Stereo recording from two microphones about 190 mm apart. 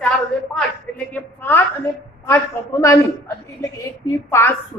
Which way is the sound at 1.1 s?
10° left (ahead or behind).